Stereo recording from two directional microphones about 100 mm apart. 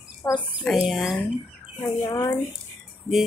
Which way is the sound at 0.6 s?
Centre (ahead or behind).